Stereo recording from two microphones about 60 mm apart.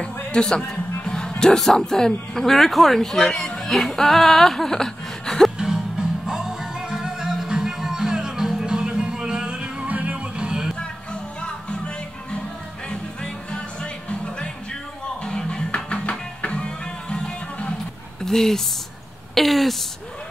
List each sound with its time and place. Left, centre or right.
0.0 s a sound: centre
1.4 s speech: centre
5.6 s music: centre
12.9 s music: centre
18.2 s speech: centre
19.3 s a sound: centre